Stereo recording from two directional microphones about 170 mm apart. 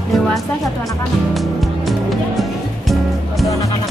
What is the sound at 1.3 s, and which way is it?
Music, centre (ahead or behind).